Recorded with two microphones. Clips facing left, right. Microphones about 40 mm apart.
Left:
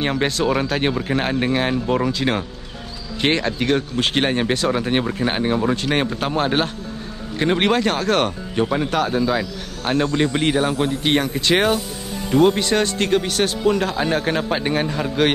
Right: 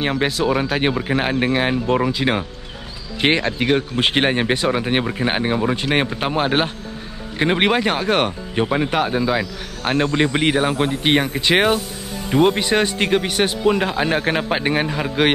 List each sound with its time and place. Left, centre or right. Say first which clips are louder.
0.0 s speech: right 1 dB; centre